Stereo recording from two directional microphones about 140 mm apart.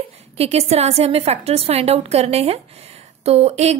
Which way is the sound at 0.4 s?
45° right (ahead or behind).